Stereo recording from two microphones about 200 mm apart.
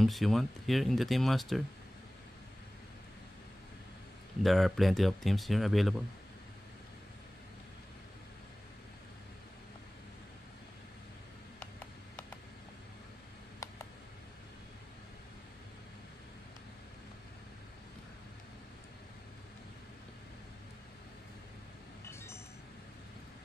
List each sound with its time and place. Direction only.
0.0 s speech: centre (ahead or behind)
4.4 s speech: centre (ahead or behind)
11.6 s a sound: 5° left (ahead or behind)